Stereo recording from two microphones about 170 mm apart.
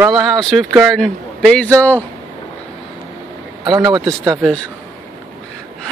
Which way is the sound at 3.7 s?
25° right (ahead or behind).